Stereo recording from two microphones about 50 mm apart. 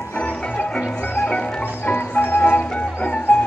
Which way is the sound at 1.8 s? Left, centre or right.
Left.